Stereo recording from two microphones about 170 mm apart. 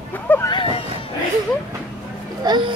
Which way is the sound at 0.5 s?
30° left (ahead or behind).